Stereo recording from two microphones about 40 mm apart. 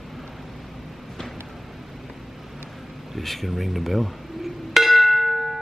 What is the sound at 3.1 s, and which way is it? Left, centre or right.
Speech, centre.